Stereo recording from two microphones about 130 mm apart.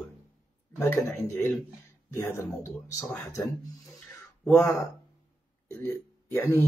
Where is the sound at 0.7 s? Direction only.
20° left (ahead or behind).